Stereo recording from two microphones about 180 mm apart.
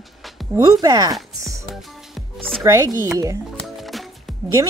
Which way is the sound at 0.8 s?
20° right (ahead or behind).